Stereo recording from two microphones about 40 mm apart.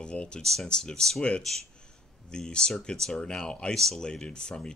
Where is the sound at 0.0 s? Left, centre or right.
Left.